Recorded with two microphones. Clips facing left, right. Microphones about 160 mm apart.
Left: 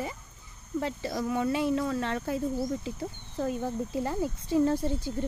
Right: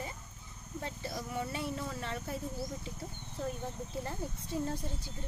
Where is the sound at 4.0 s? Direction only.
90° left.